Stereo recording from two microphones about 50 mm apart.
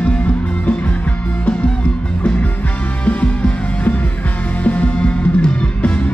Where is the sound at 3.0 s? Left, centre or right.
Left.